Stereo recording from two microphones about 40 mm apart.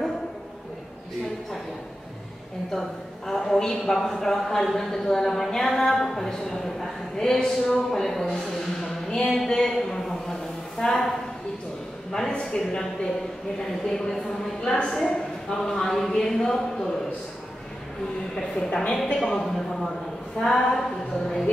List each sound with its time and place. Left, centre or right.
2.7 s a man's voice: centre
8.8 s a sound: centre
10.8 s a woman's voice: centre
18.3 s speech: centre